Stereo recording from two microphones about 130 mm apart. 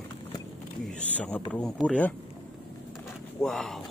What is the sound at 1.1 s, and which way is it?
Speech, 10° left (ahead or behind).